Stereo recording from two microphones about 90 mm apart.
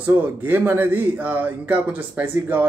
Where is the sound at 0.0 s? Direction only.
20° right (ahead or behind).